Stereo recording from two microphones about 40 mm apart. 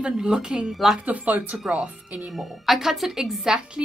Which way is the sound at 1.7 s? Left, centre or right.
Right.